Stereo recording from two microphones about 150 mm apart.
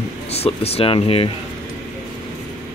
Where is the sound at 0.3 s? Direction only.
40° left (ahead or behind).